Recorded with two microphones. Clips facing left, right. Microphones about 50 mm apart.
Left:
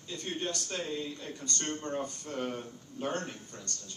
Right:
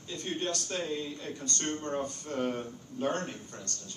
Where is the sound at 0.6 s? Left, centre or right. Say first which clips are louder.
Right 2 dB; right.